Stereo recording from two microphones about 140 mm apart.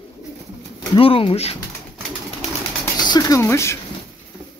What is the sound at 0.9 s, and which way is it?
Speech, 40° left (ahead or behind).